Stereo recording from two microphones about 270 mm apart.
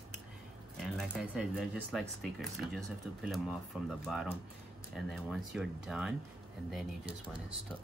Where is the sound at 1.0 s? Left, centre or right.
Centre.